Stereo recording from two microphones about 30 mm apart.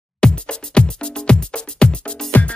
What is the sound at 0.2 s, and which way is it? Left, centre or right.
Music, left.